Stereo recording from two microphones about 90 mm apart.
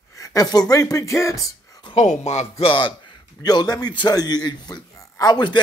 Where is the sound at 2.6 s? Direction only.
65° left (ahead or behind).